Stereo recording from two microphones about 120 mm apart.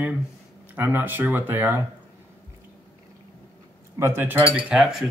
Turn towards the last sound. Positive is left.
turn(degrees=-5)  # may be behind; listen again after turning